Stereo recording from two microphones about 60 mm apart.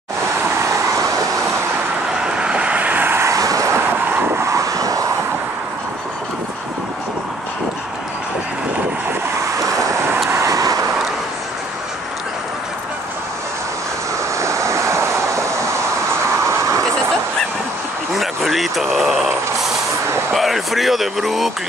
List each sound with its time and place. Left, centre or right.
0.6 s vehicle: right
2.2 s vehicle: centre
3.2 s vehicle: right
3.7 s vehicle: right
4.5 s vehicle: right
9.6 s vehicle: right
14.4 s waves: right
16.4 s vehicle: right
18.1 s a sound: centre
20.3 s a sound: centre